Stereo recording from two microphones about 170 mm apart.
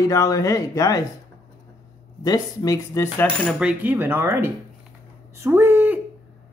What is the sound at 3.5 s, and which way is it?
Speech, 5° right (ahead or behind).